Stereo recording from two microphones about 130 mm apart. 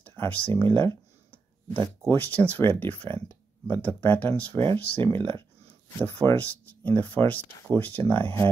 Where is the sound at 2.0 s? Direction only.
15° left (ahead or behind).